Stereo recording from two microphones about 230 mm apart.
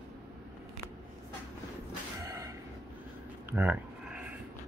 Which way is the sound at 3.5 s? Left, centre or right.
Centre.